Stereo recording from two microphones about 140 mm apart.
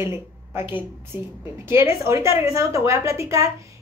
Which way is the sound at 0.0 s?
15° right (ahead or behind).